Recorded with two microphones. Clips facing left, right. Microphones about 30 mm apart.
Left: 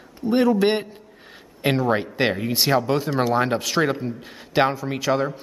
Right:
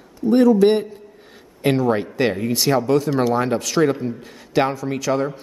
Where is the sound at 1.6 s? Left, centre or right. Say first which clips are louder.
Right 2 dB; centre.